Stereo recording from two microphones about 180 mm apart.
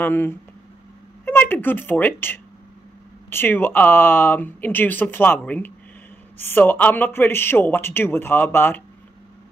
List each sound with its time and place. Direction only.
0.0 s a woman's voice: 10° left (ahead or behind)